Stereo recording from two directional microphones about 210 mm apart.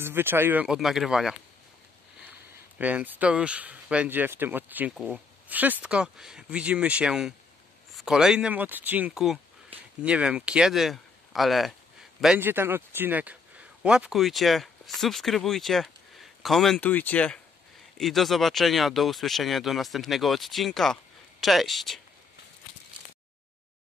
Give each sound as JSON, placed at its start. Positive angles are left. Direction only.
{"t": 0.0, "sound": "speech", "side_deg": -10}
{"t": 2.8, "sound": "speech", "side_deg": -5}
{"t": 9.7, "sound": "a sound", "side_deg": -25}
{"t": 10.0, "sound": "speech", "side_deg": -5}